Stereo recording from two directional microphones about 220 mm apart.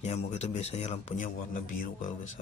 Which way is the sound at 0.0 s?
30° left (ahead or behind).